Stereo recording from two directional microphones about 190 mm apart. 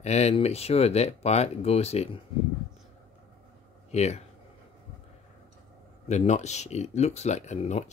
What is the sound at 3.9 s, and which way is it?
Speech, 35° left (ahead or behind).